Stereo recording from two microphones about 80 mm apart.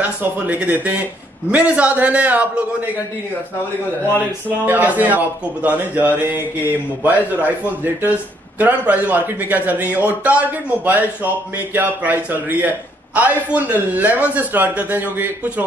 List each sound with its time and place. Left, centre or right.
0.2 s a man's voice: centre
4.6 s a man's voice: right